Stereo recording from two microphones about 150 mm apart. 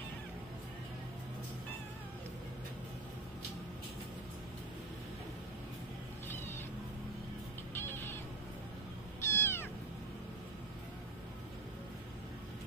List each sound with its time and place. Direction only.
7.7 s music: 15° left (ahead or behind)
9.2 s cat: 15° left (ahead or behind)